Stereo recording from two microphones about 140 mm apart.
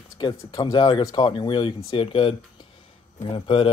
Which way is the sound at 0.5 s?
30° left (ahead or behind).